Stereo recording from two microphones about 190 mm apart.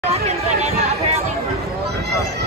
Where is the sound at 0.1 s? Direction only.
35° right (ahead or behind).